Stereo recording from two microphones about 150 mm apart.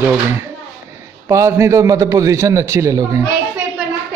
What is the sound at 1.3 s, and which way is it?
A man's voice, 20° right (ahead or behind).